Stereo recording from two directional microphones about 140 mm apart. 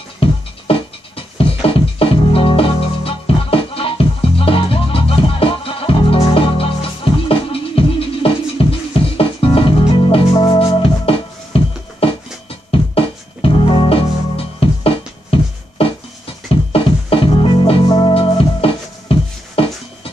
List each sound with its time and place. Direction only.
0.2 s music: 40° left (ahead or behind)